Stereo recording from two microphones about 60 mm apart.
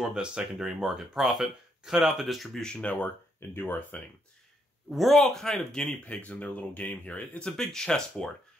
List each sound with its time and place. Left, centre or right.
0.0 s speech: centre
2.6 s speech: centre
3.3 s speech: left
4.9 s speech: centre
6.0 s speech: left